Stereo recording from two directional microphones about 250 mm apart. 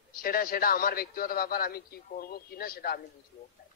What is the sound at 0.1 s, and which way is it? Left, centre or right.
A woman's voice, left.